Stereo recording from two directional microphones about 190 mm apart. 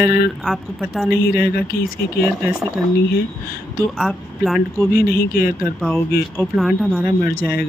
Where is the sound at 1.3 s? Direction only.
55° left (ahead or behind).